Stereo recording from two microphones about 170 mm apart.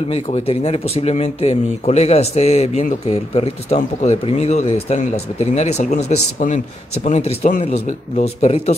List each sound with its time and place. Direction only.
0.1 s speech: 35° left (ahead or behind)